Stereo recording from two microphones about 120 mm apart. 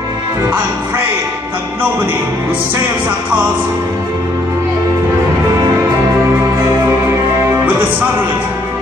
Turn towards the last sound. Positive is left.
turn(degrees=-20)  # may be behind; listen again after turning